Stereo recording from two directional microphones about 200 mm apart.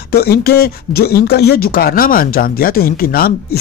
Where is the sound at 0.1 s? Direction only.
50° left (ahead or behind).